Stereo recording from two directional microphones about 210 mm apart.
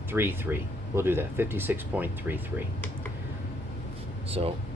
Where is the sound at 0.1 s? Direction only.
10° right (ahead or behind).